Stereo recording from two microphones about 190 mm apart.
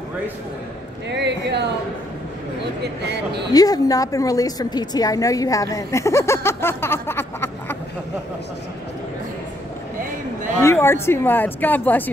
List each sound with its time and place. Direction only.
1.1 s speech: 65° right (ahead or behind)
2.8 s speech: 60° right (ahead or behind)
3.5 s a woman's voice: 20° left (ahead or behind)
10.6 s speech: 15° left (ahead or behind)